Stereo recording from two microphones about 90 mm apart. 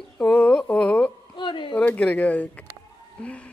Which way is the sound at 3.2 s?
15° left (ahead or behind).